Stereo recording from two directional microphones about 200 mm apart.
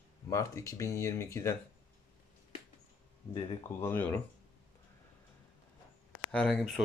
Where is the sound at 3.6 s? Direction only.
10° left (ahead or behind).